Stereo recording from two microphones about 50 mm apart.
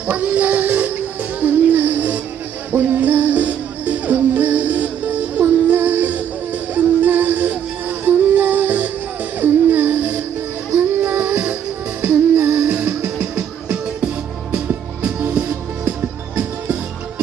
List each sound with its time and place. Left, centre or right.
0.0 s music: right